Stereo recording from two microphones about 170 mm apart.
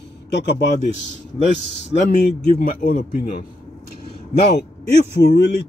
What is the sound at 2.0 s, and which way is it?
Speech, 50° left (ahead or behind).